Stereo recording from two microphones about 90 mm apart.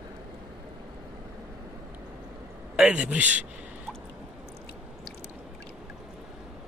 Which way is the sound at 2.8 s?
10° right (ahead or behind).